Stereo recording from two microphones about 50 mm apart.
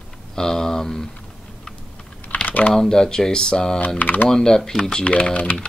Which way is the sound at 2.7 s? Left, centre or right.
Centre.